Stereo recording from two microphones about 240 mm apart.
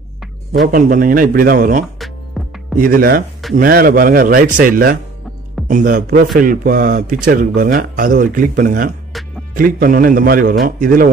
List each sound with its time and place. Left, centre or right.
0.7 s a man's voice: right
2.4 s music: centre
2.8 s a man's voice: right